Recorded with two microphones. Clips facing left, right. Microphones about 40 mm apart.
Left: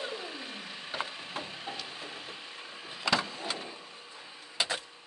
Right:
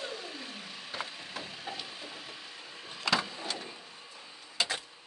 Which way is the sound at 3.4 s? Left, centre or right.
Centre.